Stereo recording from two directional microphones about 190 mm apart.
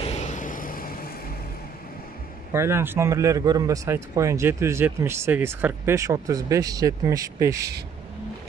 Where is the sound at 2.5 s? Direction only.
15° right (ahead or behind).